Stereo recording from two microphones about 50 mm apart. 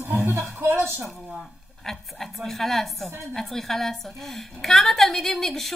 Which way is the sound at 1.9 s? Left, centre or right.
Centre.